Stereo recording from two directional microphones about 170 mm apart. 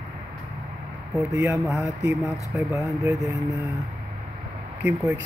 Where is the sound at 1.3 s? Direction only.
15° right (ahead or behind).